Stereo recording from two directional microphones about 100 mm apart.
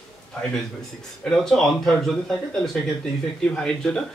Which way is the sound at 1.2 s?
5° left (ahead or behind).